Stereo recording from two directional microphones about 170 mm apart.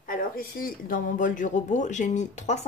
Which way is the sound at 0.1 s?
60° left (ahead or behind).